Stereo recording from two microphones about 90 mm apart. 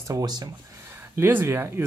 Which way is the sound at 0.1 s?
50° right (ahead or behind).